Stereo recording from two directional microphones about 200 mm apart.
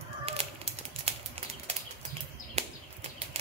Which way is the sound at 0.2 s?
30° right (ahead or behind).